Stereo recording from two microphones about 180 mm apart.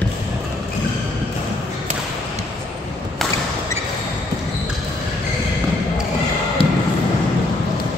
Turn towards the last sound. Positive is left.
turn(degrees=30)  # may be behind; listen again after turning